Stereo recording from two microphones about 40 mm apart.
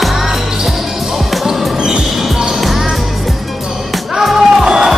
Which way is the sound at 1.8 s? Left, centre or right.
Centre.